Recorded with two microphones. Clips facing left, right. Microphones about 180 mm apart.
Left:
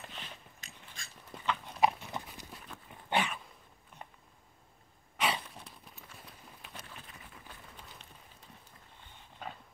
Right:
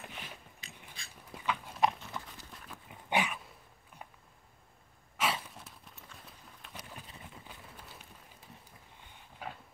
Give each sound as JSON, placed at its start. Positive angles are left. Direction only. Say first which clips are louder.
{"t": 0.0, "sound": "dog", "louder": "right 1 dB", "side_deg": -10}
{"t": 0.6, "sound": "a sound", "louder": "right 1 dB", "side_deg": 45}
{"t": 1.3, "sound": "pig", "louder": "even", "side_deg": -10}
{"t": 2.0, "sound": "clip-clop", "louder": "left 2 dB", "side_deg": 15}
{"t": 2.7, "sound": "dog", "louder": "even", "side_deg": -10}
{"t": 5.1, "sound": "a sound", "louder": "left 1 dB", "side_deg": -5}
{"t": 6.7, "sound": "run", "louder": "right 3 dB", "side_deg": -10}
{"t": 9.4, "sound": "dog", "louder": "right 1 dB", "side_deg": -10}